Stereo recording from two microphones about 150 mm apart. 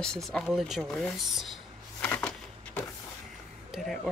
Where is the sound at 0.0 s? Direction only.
5° left (ahead or behind).